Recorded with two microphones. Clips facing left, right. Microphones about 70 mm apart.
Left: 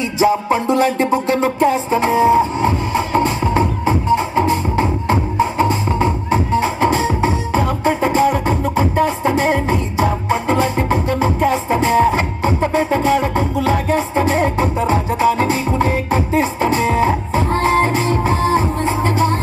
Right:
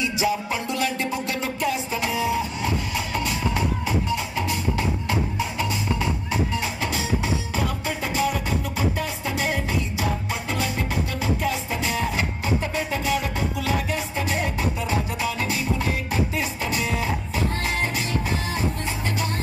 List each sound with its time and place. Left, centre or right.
0.2 s music: left